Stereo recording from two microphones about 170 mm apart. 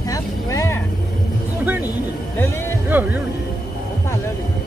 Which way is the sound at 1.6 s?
10° right (ahead or behind).